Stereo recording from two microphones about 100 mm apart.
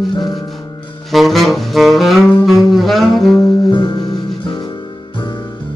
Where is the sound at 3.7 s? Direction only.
45° left (ahead or behind).